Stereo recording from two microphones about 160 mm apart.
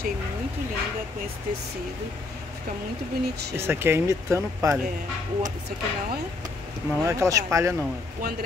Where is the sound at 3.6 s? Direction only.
15° right (ahead or behind).